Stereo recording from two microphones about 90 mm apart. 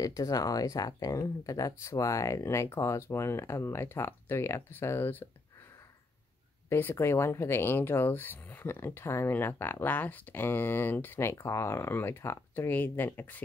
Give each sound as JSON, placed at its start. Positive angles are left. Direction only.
{"t": 0.0, "sound": "speech", "side_deg": 40}
{"t": 6.7, "sound": "speech", "side_deg": 25}